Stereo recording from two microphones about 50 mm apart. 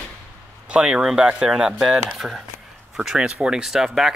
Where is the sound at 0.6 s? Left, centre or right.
Right.